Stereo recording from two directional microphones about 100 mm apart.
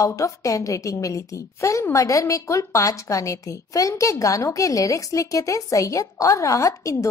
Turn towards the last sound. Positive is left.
turn(degrees=30)  # may be behind; listen again after turning